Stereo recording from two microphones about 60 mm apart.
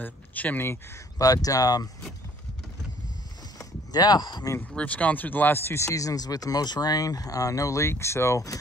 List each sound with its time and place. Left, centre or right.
0.0 s speech: left
1.1 s speech: left
3.5 s speech: left
4.7 s speech: left
5.8 s speech: left
7.8 s speech: left